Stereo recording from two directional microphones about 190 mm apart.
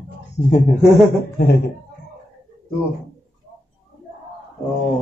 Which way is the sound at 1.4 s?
55° left (ahead or behind).